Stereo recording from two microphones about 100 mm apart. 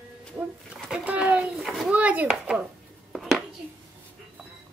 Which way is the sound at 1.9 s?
15° right (ahead or behind).